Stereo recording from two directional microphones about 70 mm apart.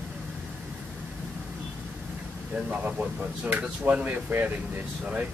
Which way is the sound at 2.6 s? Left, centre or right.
Right.